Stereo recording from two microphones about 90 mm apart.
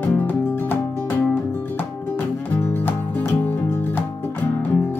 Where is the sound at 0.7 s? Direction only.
20° left (ahead or behind).